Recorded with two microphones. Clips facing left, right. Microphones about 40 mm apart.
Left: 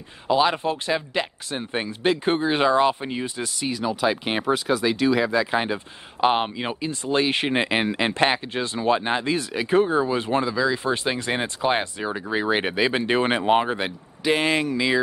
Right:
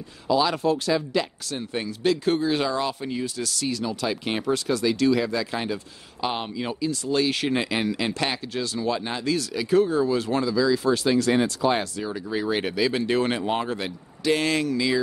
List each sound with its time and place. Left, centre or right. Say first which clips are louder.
0.3 s speech: left 1 dB; left